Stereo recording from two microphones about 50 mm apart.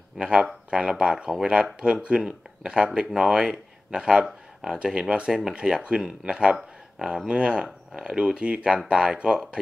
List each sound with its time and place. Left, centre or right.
0.2 s speech: right